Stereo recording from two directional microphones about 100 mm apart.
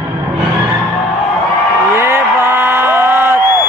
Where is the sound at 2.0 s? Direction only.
25° right (ahead or behind).